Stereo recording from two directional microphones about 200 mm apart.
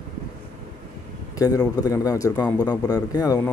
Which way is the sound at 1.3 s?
20° left (ahead or behind).